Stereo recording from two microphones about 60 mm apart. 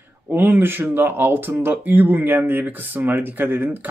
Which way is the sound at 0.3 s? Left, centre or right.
Right.